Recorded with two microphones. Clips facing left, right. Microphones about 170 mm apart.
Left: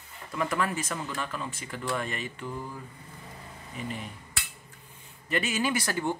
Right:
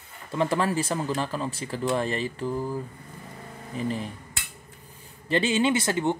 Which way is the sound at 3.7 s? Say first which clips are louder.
Right 8 dB; 35° right (ahead or behind).